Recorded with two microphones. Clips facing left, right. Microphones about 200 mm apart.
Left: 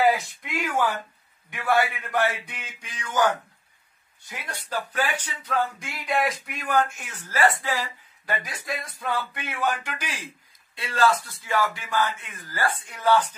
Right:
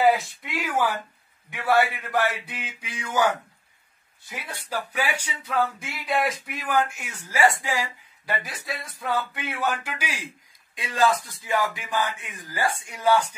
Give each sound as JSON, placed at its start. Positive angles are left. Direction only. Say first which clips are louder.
{"t": 0.0, "sound": "a sound", "louder": "right 1 dB", "side_deg": 0}
{"t": 2.0, "sound": "speech", "louder": "even", "side_deg": -5}
{"t": 4.5, "sound": "speech", "louder": "left 1 dB", "side_deg": -10}